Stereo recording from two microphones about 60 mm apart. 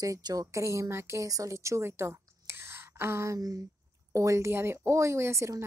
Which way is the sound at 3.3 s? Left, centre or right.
Right.